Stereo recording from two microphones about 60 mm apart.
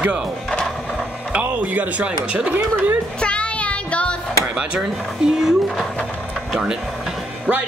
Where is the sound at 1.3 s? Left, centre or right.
Right.